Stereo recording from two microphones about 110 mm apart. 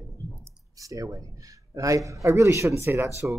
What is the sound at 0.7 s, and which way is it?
A man's voice, 30° right (ahead or behind).